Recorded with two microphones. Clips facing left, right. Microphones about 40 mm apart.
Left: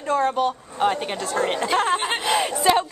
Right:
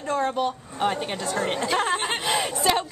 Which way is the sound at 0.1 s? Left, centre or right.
Centre.